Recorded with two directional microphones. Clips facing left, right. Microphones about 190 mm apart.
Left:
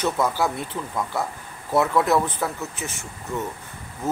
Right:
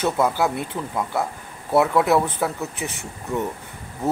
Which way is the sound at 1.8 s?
10° right (ahead or behind).